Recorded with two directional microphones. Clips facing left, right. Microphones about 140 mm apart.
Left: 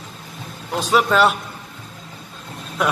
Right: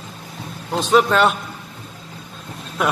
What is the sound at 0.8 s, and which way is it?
Speech, 5° left (ahead or behind).